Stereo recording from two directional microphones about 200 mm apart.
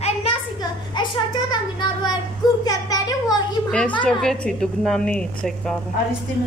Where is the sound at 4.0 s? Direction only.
5° left (ahead or behind).